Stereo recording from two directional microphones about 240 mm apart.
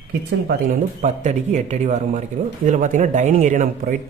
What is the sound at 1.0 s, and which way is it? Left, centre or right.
Speech, right.